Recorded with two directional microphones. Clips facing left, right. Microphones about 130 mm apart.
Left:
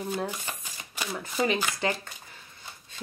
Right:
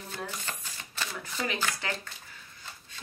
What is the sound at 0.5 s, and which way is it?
Shuffling cards, 15° left (ahead or behind).